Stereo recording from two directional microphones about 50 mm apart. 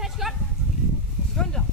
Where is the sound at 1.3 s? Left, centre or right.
Centre.